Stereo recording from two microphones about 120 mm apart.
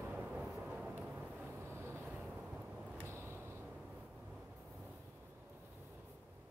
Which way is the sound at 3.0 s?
20° right (ahead or behind).